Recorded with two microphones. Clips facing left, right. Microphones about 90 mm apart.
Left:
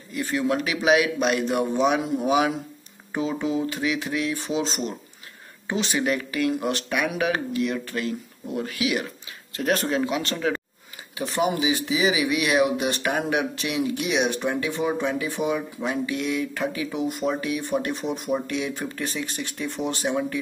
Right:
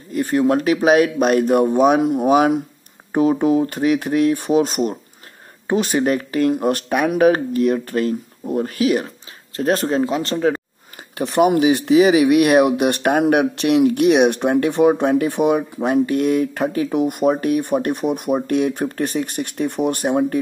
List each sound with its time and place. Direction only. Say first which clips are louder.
0.1 s speech: right 8 dB; 45° right (ahead or behind)
11.1 s speech: right 9 dB; 60° right (ahead or behind)